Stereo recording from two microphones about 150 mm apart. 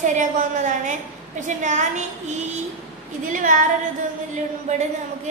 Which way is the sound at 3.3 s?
60° right (ahead or behind).